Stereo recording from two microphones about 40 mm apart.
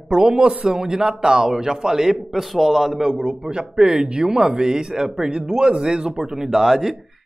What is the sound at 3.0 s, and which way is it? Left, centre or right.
A man's voice, centre.